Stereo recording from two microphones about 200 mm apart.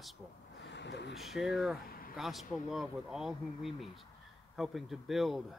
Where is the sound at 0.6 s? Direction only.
60° left (ahead or behind).